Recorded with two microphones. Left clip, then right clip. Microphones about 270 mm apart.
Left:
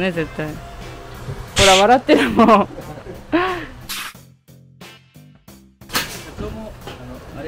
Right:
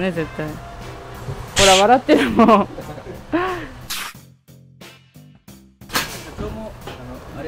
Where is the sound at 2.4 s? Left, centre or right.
Left.